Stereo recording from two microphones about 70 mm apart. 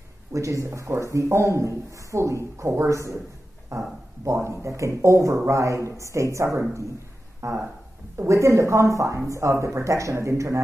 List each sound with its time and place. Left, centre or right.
0.3 s a man's voice: right